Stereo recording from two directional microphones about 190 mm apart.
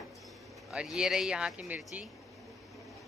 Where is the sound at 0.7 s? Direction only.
5° right (ahead or behind).